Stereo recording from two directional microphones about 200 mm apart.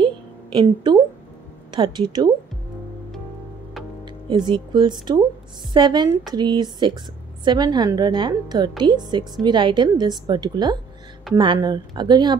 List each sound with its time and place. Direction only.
0.0 s a sound: 25° right (ahead or behind)
1.7 s a woman's voice: 20° right (ahead or behind)
4.0 s a woman's voice: 20° right (ahead or behind)